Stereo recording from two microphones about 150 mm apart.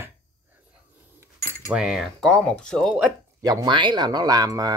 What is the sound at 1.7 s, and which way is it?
Speech, 5° right (ahead or behind).